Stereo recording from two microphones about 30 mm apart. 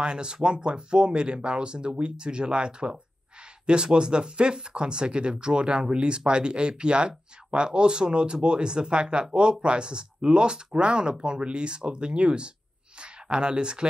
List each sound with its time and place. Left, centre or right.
0.0 s speech: right